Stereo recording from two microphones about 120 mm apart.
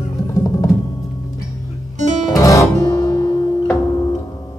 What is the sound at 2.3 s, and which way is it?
Music, 30° left (ahead or behind).